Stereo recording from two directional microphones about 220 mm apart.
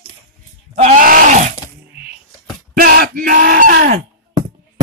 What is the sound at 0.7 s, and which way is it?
Groan, 35° right (ahead or behind).